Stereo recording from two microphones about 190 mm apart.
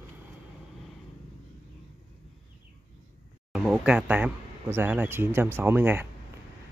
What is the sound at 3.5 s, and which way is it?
Speech, 5° right (ahead or behind).